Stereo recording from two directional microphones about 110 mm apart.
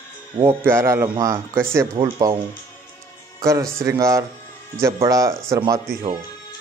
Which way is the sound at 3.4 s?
30° right (ahead or behind).